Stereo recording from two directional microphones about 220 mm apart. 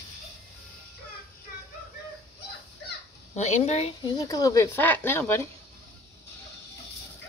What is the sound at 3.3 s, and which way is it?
Speech, 30° left (ahead or behind).